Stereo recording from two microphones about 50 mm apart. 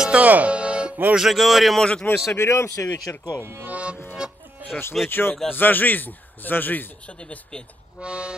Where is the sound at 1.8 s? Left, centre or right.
Left.